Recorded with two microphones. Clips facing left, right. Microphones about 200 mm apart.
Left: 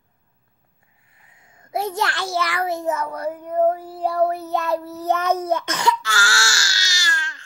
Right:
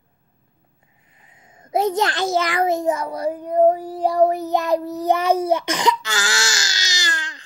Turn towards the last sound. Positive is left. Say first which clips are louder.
# right 1 dB
turn(degrees=-20)  # may be behind; listen again after turning